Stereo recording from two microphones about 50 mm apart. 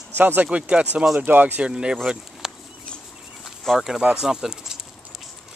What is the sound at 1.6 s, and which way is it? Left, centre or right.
Speech, centre.